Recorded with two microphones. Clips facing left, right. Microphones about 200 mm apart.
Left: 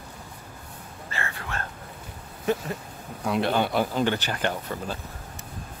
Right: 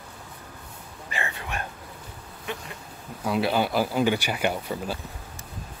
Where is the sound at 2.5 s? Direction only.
40° left (ahead or behind).